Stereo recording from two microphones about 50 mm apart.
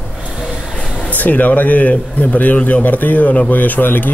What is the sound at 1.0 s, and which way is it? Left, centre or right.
A man's voice, left.